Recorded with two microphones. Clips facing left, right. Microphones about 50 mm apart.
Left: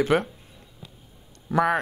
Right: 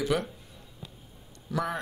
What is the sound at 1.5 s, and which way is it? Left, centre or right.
Speech, left.